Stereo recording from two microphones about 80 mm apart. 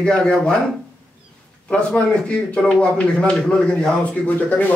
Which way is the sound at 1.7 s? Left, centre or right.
Centre.